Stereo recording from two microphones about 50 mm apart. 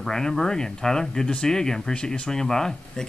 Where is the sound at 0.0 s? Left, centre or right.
Centre.